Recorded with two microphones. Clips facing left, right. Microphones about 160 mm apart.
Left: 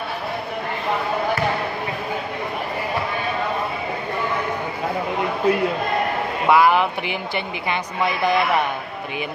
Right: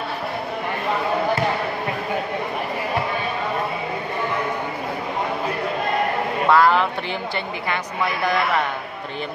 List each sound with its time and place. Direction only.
6.5 s speech: 15° left (ahead or behind)